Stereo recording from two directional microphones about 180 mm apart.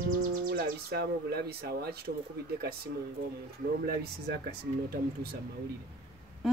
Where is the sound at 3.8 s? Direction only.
65° right (ahead or behind).